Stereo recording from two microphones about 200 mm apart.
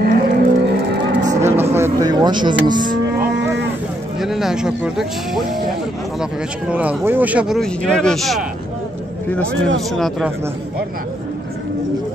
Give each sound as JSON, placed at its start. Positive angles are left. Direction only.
{"t": 0.0, "sound": "cattle", "side_deg": -45}
{"t": 1.4, "sound": "a sound", "side_deg": -10}
{"t": 2.7, "sound": "moo", "side_deg": -40}
{"t": 4.2, "sound": "speech", "side_deg": 0}
{"t": 6.7, "sound": "speech", "side_deg": -5}